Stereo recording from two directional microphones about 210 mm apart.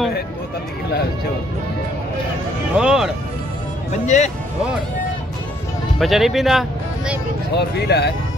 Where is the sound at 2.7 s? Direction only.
5° right (ahead or behind).